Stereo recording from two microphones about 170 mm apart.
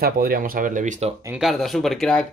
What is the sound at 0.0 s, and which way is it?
Speech, 60° right (ahead or behind).